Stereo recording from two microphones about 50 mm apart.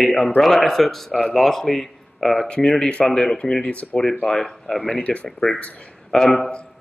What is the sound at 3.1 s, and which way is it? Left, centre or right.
Speech, centre.